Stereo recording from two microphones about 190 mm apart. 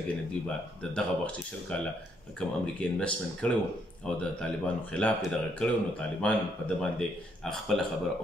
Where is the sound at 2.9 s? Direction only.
5° left (ahead or behind).